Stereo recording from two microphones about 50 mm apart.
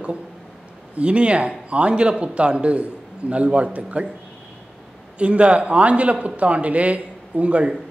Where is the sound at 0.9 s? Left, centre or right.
Right.